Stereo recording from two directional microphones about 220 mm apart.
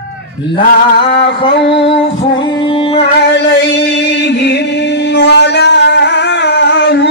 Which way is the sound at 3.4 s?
50° left (ahead or behind).